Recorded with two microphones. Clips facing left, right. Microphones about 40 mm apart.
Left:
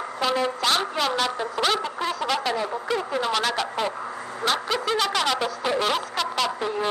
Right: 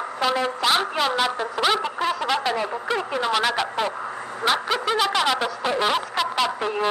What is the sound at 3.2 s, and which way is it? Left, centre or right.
Speech, centre.